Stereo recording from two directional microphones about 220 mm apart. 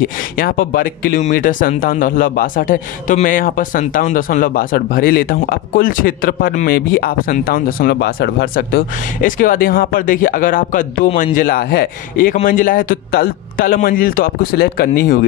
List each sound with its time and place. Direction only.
0.0 s speech: 40° left (ahead or behind)